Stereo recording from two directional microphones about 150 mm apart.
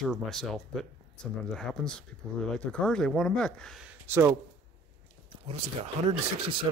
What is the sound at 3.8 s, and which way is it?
Speech, 15° right (ahead or behind).